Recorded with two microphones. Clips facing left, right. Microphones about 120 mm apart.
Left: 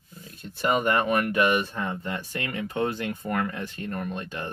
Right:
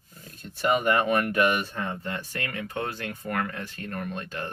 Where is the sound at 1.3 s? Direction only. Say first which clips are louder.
Left 1 dB; 20° left (ahead or behind).